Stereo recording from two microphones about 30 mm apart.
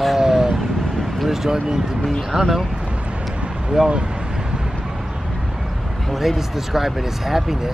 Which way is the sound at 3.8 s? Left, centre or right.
Right.